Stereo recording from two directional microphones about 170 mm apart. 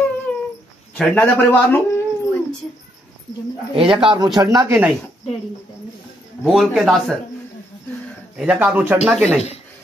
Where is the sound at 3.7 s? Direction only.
30° right (ahead or behind).